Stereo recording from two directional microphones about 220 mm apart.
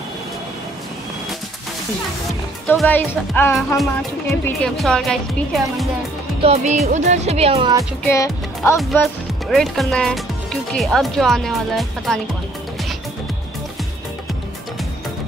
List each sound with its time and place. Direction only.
2.7 s speech: 10° left (ahead or behind)
6.4 s speech: 30° right (ahead or behind)
8.1 s speech: 15° left (ahead or behind)
8.7 s speech: centre (ahead or behind)